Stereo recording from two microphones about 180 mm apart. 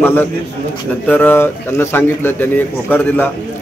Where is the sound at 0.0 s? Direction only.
10° left (ahead or behind).